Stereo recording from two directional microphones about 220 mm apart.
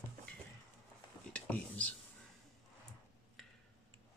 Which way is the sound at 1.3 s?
5° left (ahead or behind).